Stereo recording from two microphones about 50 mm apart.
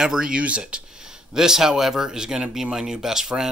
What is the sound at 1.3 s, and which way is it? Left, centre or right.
Speech, centre.